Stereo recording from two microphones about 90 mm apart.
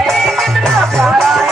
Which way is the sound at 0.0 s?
5° left (ahead or behind).